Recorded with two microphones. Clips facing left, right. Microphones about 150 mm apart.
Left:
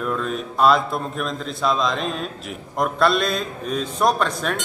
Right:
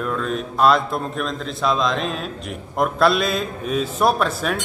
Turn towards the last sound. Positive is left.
turn(degrees=-5)  # may be behind; listen again after turning